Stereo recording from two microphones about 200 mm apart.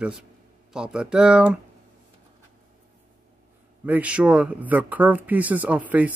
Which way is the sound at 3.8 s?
5° right (ahead or behind).